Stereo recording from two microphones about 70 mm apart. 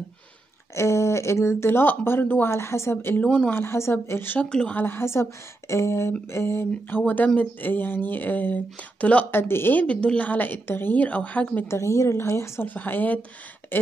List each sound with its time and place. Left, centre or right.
0.7 s speech: left
2.5 s speech: left
3.2 s speech: centre
3.5 s speech: left
4.4 s speech: centre
4.7 s speech: left
6.7 s speech: left
9.4 s speech: left
9.8 s speech: centre
11.6 s speech: left
12.6 s speech: left